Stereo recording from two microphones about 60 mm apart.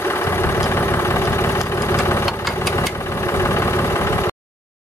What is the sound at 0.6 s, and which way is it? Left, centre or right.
Engine, left.